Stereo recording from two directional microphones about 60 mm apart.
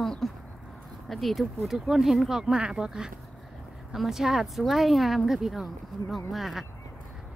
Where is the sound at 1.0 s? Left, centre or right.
Centre.